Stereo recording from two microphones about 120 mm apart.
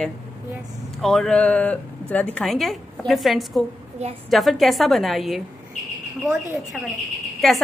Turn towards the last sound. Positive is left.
turn(degrees=0)  # may be behind; listen again after turning